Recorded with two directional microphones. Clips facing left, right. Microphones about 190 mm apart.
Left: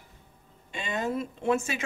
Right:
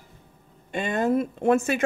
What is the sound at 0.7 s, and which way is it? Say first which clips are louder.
Speech: right 7 dB; 55° right (ahead or behind).